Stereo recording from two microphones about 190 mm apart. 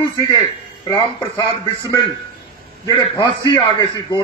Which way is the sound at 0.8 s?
25° left (ahead or behind).